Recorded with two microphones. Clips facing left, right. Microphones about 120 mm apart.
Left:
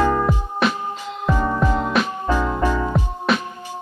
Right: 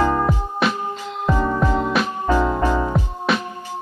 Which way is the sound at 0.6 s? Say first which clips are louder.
Even; centre (ahead or behind).